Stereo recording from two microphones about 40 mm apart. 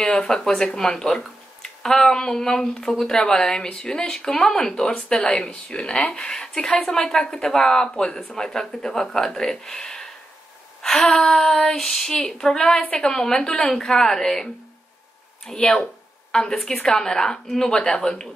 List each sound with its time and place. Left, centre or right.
0.0 s speech: left
0.3 s speech: centre
10.8 s a sound: centre
11.1 s speech: centre
15.5 s a woman's voice: left